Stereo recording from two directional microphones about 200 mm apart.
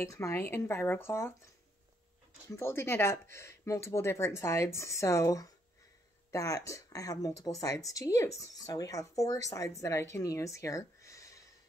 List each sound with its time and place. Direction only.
0.0 s speech: 15° left (ahead or behind)
2.5 s speech: 10° left (ahead or behind)